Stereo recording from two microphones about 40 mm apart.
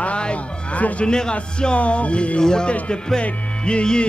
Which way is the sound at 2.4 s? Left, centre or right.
Centre.